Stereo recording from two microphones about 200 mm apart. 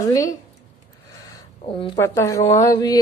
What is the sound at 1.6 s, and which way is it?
Speech, 25° left (ahead or behind).